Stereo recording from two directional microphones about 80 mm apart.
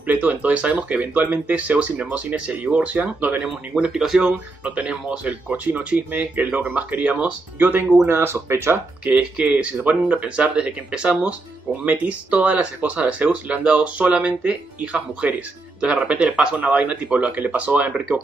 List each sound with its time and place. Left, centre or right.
0.0 s speech: centre
3.4 s speech: centre; by 8.8 s right
9.0 s speech: centre